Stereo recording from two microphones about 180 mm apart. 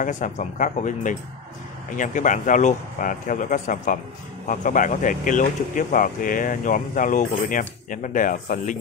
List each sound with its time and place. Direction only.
0.0 s speech: 45° left (ahead or behind)